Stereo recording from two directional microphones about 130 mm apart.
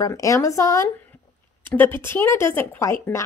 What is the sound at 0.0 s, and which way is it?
Speech, 25° left (ahead or behind).